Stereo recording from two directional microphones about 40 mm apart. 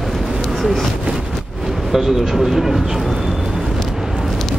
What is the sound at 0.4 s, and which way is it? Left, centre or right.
Vehicle, centre.